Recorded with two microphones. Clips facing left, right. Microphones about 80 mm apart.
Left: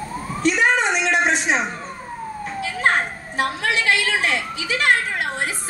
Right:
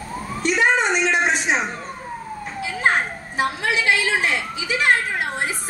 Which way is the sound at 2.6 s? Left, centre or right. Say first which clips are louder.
Even; centre.